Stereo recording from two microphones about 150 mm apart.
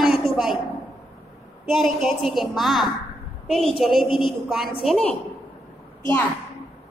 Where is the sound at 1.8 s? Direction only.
Centre (ahead or behind).